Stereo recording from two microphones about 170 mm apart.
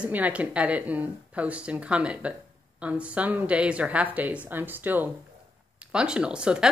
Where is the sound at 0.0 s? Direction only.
10° right (ahead or behind).